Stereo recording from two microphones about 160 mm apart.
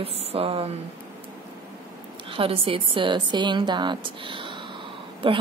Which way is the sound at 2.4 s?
35° right (ahead or behind).